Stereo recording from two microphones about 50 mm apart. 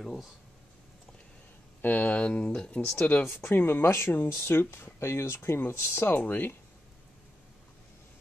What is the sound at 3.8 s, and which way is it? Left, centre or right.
Speech, left.